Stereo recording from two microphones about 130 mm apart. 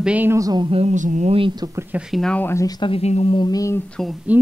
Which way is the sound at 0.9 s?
70° right (ahead or behind).